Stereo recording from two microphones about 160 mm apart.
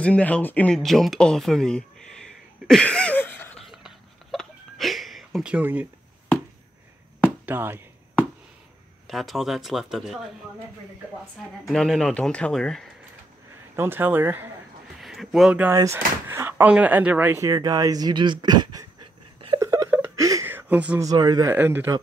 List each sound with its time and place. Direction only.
0.0 s speech: 5° left (ahead or behind)
3.6 s a sound: centre (ahead or behind)
7.2 s a sound: 10° right (ahead or behind)
9.0 s speech: centre (ahead or behind)
11.6 s speech: centre (ahead or behind)
13.7 s speech: 15° right (ahead or behind)
15.0 s speech: centre (ahead or behind)
15.7 s speech: 20° right (ahead or behind)
17.4 s speech: 20° right (ahead or behind)
19.6 s a sound: 20° right (ahead or behind)
21.0 s speech: 25° right (ahead or behind)
21.5 s speech: 15° right (ahead or behind)